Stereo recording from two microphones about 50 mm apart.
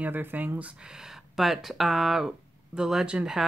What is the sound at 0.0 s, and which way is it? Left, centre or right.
Speech, right.